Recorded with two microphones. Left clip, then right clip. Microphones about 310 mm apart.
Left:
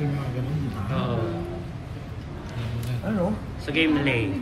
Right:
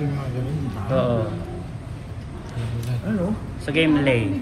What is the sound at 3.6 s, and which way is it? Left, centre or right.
Speech, centre.